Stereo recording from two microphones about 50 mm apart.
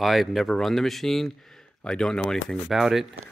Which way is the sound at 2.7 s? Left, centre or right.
Centre.